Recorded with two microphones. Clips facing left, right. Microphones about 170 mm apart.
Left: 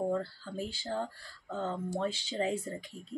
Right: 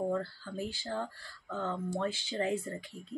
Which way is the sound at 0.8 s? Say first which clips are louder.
Left 1 dB; 20° left (ahead or behind).